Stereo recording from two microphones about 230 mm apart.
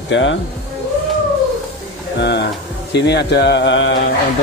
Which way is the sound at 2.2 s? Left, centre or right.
Left.